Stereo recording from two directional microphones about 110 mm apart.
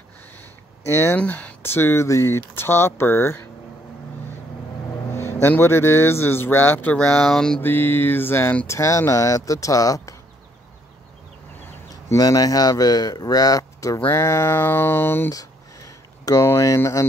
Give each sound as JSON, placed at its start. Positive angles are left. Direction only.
{"t": 0.8, "sound": "a man's voice", "side_deg": 25}
{"t": 1.1, "sound": "a man's voice", "side_deg": 15}
{"t": 5.1, "sound": "a man's voice", "side_deg": 20}
{"t": 7.6, "sound": "a man's voice", "side_deg": 20}
{"t": 11.9, "sound": "a man's voice", "side_deg": 35}